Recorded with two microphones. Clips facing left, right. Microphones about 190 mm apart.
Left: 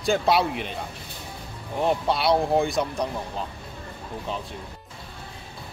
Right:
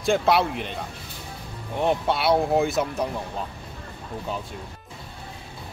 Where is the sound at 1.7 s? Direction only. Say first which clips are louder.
Even; centre (ahead or behind).